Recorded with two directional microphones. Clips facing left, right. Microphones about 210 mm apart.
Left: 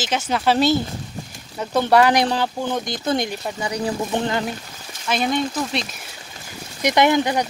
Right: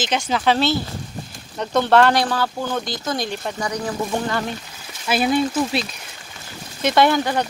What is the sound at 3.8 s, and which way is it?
Speech, 20° left (ahead or behind).